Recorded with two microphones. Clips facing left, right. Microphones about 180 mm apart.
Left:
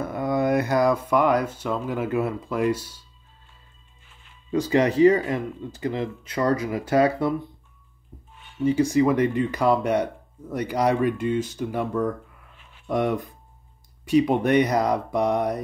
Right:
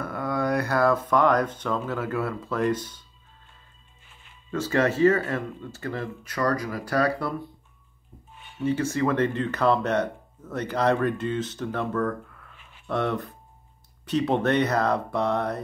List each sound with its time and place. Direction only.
0.0 s speech: 20° left (ahead or behind)
4.5 s speech: 15° left (ahead or behind)
8.6 s speech: 15° left (ahead or behind)